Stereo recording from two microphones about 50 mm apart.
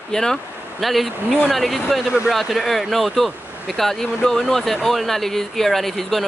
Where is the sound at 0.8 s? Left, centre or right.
Centre.